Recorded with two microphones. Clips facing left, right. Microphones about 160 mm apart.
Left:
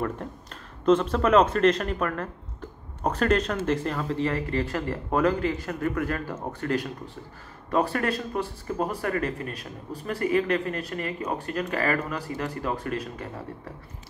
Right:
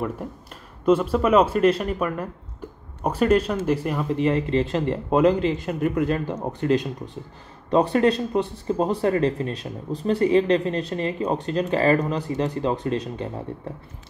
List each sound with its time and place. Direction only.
0.8 s speech: 10° right (ahead or behind); by 13.3 s 25° right (ahead or behind)